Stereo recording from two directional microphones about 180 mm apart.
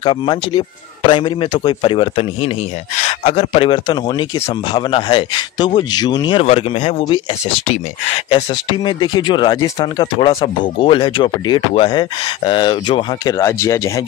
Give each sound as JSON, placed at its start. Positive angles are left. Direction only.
{"t": 0.0, "sound": "speech", "side_deg": 25}